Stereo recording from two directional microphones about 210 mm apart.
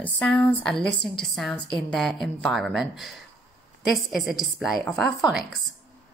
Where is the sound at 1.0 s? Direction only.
Centre (ahead or behind).